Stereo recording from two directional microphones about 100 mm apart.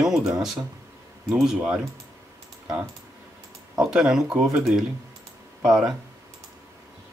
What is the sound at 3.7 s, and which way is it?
Speech, 10° right (ahead or behind).